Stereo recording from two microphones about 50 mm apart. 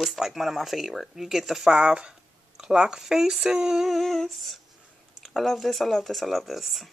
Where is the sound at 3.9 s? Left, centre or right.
Centre.